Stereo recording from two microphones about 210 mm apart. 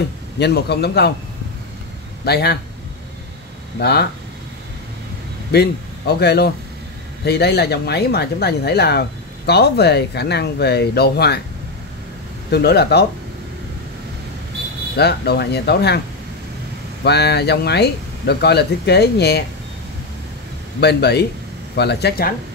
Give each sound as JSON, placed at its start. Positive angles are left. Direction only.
{"t": 0.4, "sound": "speech", "side_deg": 50}
{"t": 2.2, "sound": "speech", "side_deg": 50}
{"t": 3.8, "sound": "speech", "side_deg": 50}
{"t": 5.5, "sound": "speech", "side_deg": 50}
{"t": 12.4, "sound": "speech", "side_deg": 50}
{"t": 15.0, "sound": "speech", "side_deg": 50}
{"t": 17.0, "sound": "speech", "side_deg": 50}
{"t": 20.8, "sound": "speech", "side_deg": 50}